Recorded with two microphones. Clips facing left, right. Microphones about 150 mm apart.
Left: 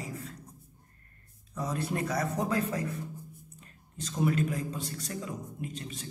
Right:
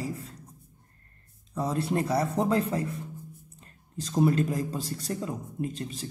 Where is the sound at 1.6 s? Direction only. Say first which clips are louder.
Right 5 dB; 30° right (ahead or behind).